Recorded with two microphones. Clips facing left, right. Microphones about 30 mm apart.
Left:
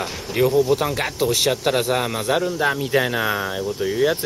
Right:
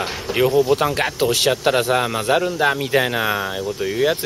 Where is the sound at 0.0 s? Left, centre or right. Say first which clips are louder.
Right 1 dB; right.